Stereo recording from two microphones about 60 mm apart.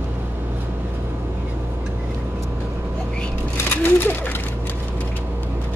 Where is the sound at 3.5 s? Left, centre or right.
Left.